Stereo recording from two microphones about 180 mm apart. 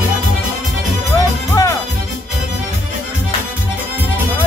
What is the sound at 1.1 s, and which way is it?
Music, 20° left (ahead or behind).